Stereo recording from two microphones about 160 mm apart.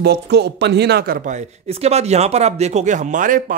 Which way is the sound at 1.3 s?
40° right (ahead or behind).